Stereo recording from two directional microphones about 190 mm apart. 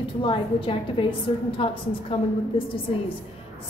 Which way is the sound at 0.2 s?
25° left (ahead or behind).